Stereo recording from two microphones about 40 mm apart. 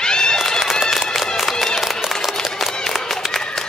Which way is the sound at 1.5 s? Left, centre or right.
Centre.